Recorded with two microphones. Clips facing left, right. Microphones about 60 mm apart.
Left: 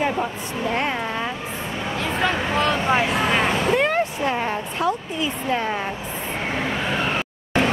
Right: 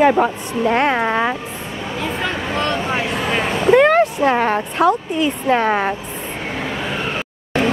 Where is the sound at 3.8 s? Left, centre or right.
Right.